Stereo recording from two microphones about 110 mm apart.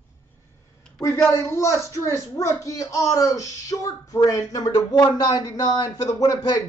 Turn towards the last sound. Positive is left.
turn(degrees=35)  # may be behind; listen again after turning